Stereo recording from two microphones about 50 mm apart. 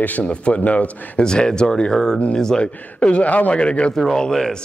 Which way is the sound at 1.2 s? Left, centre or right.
Centre.